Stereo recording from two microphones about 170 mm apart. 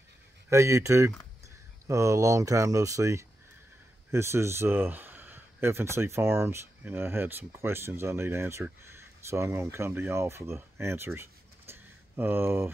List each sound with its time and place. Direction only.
0.5 s speech: 15° right (ahead or behind)